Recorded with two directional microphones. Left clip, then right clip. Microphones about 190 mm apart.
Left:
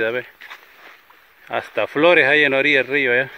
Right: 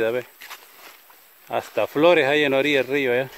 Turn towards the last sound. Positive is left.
turn(degrees=-10)  # may be behind; listen again after turning